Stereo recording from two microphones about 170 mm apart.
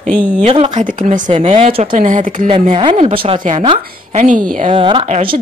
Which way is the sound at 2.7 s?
30° right (ahead or behind).